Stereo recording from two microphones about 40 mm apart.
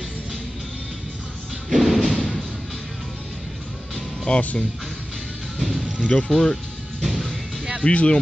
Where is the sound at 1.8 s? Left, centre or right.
Centre.